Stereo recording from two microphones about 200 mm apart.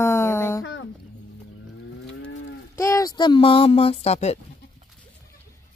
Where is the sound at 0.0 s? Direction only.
15° left (ahead or behind).